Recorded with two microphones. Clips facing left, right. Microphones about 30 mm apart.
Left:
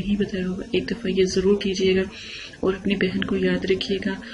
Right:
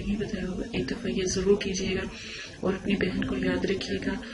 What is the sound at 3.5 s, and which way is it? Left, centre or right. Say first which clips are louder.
Speech: left 6 dB; left.